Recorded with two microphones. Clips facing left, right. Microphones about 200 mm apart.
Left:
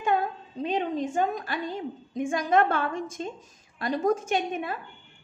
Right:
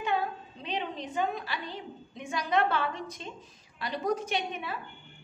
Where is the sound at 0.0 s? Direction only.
45° left (ahead or behind).